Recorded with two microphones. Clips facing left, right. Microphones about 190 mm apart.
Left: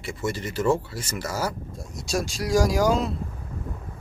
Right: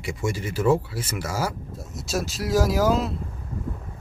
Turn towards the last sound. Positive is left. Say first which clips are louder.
# even
turn(degrees=0)  # may be behind; listen again after turning